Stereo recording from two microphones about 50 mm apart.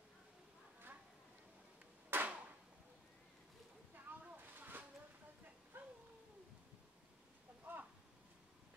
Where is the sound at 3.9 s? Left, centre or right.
Right.